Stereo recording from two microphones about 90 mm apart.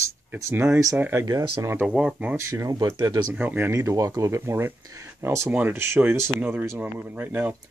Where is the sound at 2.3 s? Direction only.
35° right (ahead or behind).